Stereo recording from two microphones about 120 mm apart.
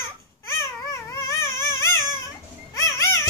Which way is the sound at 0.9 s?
25° left (ahead or behind).